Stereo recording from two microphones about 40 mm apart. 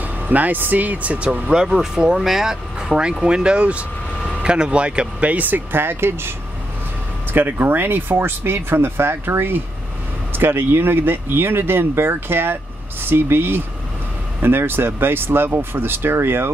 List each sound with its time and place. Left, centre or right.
0.3 s speech: right
1.6 s speech: centre
3.0 s speech: right
7.3 s speech: right
10.3 s speech: right